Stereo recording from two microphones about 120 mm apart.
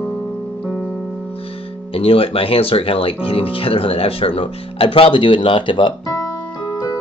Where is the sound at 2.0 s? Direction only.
50° left (ahead or behind).